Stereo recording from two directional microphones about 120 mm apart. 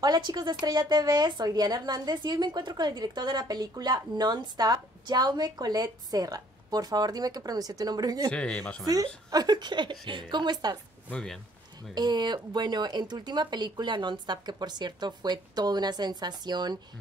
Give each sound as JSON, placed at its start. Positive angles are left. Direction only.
{"t": 0.0, "sound": "a woman's voice", "side_deg": -35}
{"t": 8.3, "sound": "speech", "side_deg": 5}
{"t": 8.8, "sound": "a woman's voice", "side_deg": -30}
{"t": 11.1, "sound": "speech", "side_deg": 5}
{"t": 11.9, "sound": "a woman's voice", "side_deg": -35}